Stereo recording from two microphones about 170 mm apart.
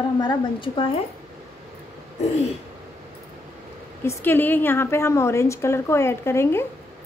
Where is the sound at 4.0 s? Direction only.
15° left (ahead or behind).